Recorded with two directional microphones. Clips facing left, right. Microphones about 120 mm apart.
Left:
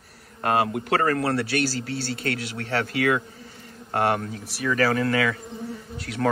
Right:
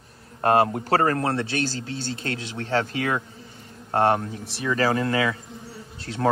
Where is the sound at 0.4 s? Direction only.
35° right (ahead or behind).